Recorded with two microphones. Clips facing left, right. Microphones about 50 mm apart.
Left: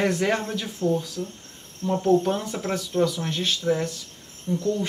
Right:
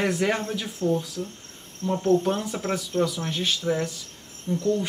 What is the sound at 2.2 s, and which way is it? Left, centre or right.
Speech, centre.